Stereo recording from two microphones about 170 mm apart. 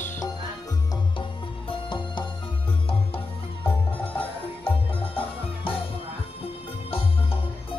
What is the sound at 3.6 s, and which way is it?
Music, 10° left (ahead or behind).